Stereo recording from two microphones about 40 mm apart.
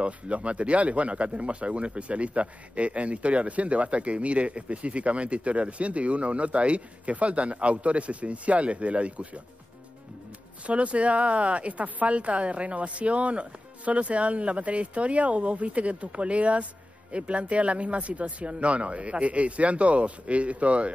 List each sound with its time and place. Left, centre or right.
0.0 s speech: right
10.7 s speech: right